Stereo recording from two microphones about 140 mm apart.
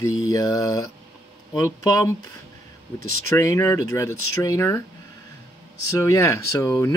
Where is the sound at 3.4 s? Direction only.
20° left (ahead or behind).